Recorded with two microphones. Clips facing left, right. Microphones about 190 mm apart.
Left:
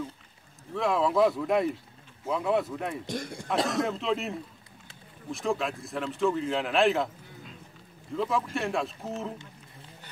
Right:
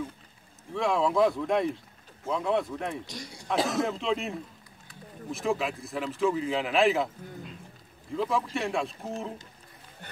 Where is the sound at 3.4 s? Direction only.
Centre (ahead or behind).